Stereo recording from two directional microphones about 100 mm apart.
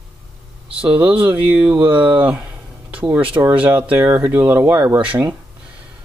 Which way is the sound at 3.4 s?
30° right (ahead or behind).